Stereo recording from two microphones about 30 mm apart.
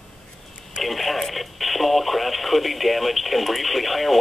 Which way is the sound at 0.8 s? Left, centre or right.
Centre.